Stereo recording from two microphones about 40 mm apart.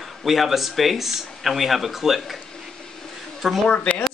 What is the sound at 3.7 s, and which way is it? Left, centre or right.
Speech, left.